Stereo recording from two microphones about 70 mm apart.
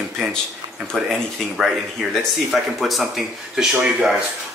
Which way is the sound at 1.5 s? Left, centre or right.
Centre.